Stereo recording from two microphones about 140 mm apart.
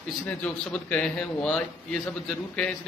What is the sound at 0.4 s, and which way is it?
A man's voice, 10° left (ahead or behind).